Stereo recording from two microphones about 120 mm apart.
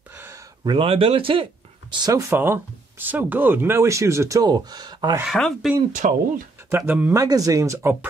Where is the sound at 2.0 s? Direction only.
30° right (ahead or behind).